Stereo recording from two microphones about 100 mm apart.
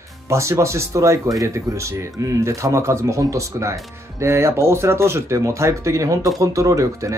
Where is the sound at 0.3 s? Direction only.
30° right (ahead or behind).